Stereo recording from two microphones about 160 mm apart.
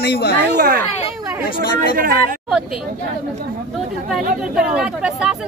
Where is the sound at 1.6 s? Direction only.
65° right (ahead or behind).